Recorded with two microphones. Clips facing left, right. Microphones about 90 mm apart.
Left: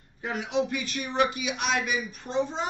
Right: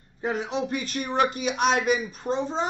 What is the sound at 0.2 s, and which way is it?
A man's voice, 35° right (ahead or behind).